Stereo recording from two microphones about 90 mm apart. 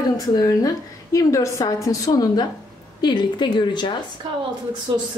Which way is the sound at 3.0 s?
55° left (ahead or behind).